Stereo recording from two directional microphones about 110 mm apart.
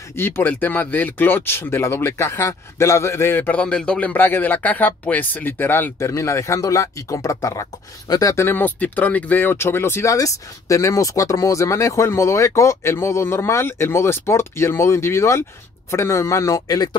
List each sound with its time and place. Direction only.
0.1 s speech: 20° left (ahead or behind); by 16.9 s 35° left (ahead or behind)